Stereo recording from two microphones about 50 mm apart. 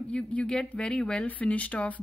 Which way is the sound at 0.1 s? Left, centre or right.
Left.